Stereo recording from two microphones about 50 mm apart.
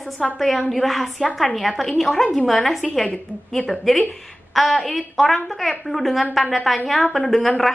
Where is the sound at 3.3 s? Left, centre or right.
Left.